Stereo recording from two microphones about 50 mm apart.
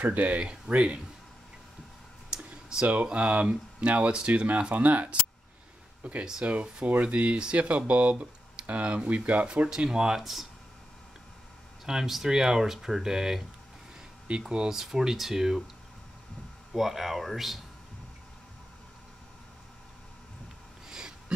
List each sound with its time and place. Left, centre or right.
0.0 s speech: right
2.3 s computer keyboard: centre
2.9 s speech: right
9.7 s speech: centre
11.8 s speech: centre
14.5 s speech: centre
16.7 s speech: centre